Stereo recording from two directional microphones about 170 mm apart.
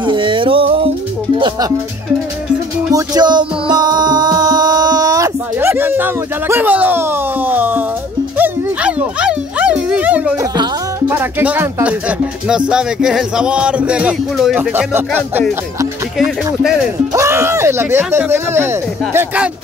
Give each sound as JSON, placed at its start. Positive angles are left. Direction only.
{"t": 0.0, "sound": "music", "side_deg": -30}
{"t": 2.9, "sound": "music", "side_deg": -20}
{"t": 11.1, "sound": "speech", "side_deg": -10}
{"t": 17.1, "sound": "speech", "side_deg": -15}